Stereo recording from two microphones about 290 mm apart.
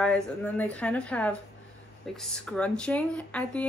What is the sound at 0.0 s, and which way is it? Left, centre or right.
Speech, centre.